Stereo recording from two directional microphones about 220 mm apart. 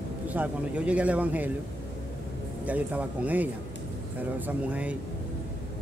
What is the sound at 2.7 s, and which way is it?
A man's voice, 5° right (ahead or behind).